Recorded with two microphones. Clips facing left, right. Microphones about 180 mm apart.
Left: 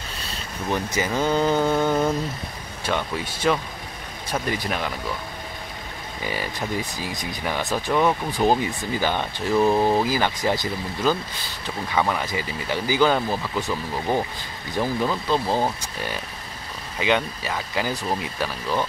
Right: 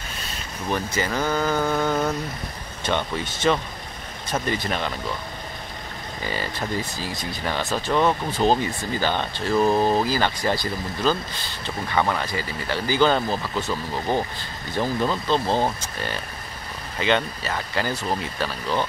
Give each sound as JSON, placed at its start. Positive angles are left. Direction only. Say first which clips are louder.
{"t": 0.9, "sound": "speech", "louder": "left 3 dB", "side_deg": 20}
{"t": 2.8, "sound": "speech", "louder": "right 1 dB", "side_deg": 5}
{"t": 6.2, "sound": "speech", "louder": "even", "side_deg": 10}
{"t": 11.6, "sound": "speech", "louder": "even", "side_deg": 5}